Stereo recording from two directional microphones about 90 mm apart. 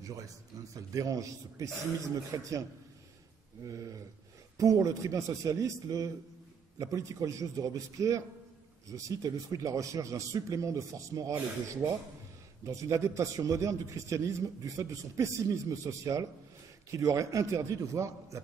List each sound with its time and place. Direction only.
0.0 s a sound: 40° right (ahead or behind)
0.7 s a man's voice: 40° right (ahead or behind)
3.6 s a man's voice: 40° right (ahead or behind)
12.6 s a man's voice: 35° right (ahead or behind)